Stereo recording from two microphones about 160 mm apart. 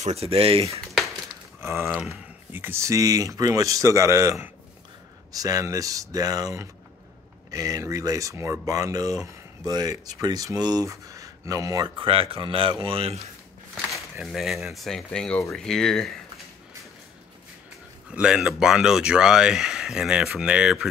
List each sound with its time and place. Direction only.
0.0 s speech: 40° right (ahead or behind)
1.6 s speech: 15° right (ahead or behind); by 13.3 s 40° right (ahead or behind)
14.1 s speech: centre (ahead or behind)
18.1 s speech: 5° right (ahead or behind)